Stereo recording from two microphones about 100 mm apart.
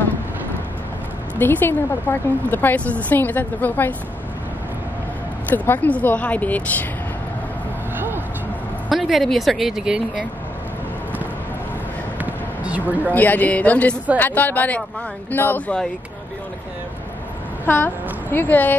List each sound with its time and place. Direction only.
1.4 s a woman's voice: 20° left (ahead or behind)
5.5 s speech: 15° left (ahead or behind)
8.8 s speech: centre (ahead or behind)
12.2 s basketball bounce: 15° right (ahead or behind)
13.1 s speech: 15° left (ahead or behind)
17.6 s a woman's voice: 20° left (ahead or behind)